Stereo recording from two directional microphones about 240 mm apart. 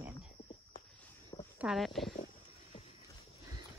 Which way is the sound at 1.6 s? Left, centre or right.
Centre.